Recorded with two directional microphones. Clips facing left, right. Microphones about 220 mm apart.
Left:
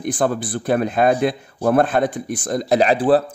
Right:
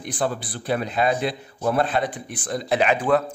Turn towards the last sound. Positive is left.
turn(degrees=35)  # may be behind; listen again after turning